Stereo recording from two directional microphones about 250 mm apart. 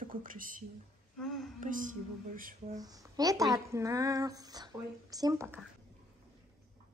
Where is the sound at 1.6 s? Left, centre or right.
Right.